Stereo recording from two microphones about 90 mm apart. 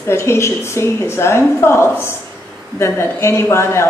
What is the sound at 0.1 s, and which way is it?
Speech, 30° left (ahead or behind).